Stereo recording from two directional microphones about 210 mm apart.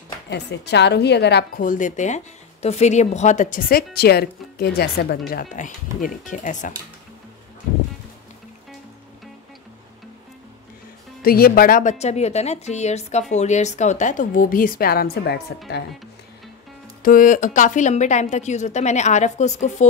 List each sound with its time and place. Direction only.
0.3 s a woman's voice: 55° left (ahead or behind); by 6.7 s 35° left (ahead or behind)
11.2 s a woman's voice: 45° left (ahead or behind)
17.0 s a woman's voice: 40° left (ahead or behind)